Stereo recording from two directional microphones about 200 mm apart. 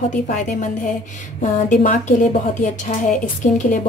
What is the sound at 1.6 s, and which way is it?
A woman's voice, 40° left (ahead or behind).